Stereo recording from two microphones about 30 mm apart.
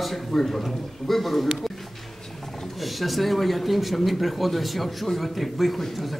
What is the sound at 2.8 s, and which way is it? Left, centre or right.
A man's voice, centre.